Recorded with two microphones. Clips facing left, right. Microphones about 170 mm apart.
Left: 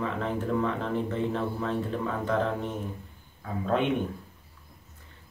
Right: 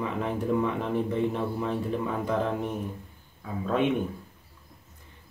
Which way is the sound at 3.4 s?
Centre (ahead or behind).